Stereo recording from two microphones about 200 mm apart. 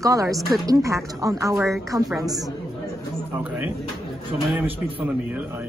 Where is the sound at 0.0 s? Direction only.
15° right (ahead or behind).